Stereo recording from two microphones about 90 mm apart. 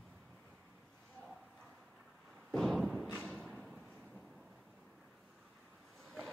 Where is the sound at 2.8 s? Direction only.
Centre (ahead or behind).